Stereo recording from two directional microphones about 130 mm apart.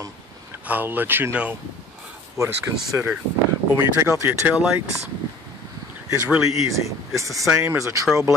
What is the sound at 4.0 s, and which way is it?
Speech, 20° right (ahead or behind).